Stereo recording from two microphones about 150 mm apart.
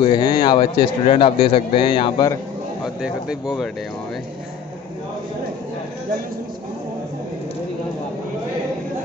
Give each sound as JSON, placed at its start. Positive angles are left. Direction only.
{"t": 0.0, "sound": "a man's voice", "side_deg": 30}
{"t": 2.8, "sound": "speech", "side_deg": -5}